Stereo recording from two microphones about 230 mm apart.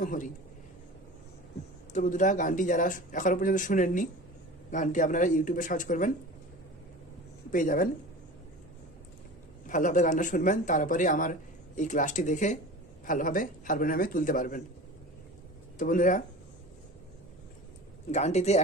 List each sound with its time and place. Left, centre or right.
0.0 s a man's voice: left
2.0 s a man's voice: left
7.5 s a man's voice: left
9.7 s a man's voice: left
15.8 s a man's voice: left
18.1 s speech: left